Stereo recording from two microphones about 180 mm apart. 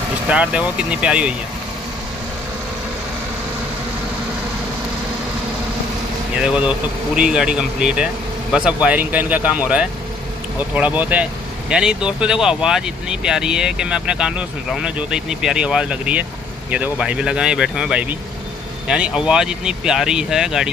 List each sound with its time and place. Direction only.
0.3 s speech: 5° right (ahead or behind)
6.3 s speech: 5° right (ahead or behind)